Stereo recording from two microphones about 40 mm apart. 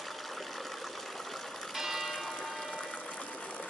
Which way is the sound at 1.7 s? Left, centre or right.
Centre.